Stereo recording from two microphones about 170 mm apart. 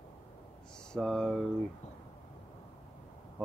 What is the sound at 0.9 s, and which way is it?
Speech, 5° left (ahead or behind).